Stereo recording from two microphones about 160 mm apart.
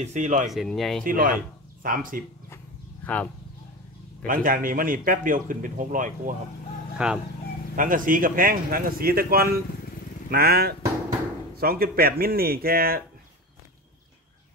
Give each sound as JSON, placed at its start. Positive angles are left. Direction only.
{"t": 0.0, "sound": "speech", "side_deg": -50}
{"t": 0.5, "sound": "speech", "side_deg": 0}
{"t": 1.0, "sound": "speech", "side_deg": -60}
{"t": 4.3, "sound": "speech", "side_deg": -60}
{"t": 7.0, "sound": "speech", "side_deg": -5}
{"t": 7.7, "sound": "speech", "side_deg": -60}